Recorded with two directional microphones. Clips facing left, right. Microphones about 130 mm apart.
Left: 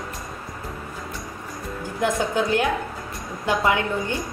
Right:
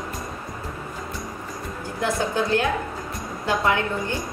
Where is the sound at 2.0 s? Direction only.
15° left (ahead or behind).